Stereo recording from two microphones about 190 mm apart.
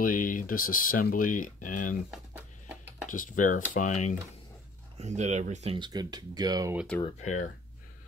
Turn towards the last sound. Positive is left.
turn(degrees=40)  # may be behind; listen again after turning